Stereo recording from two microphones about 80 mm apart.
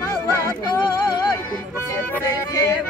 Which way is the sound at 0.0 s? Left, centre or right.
Left.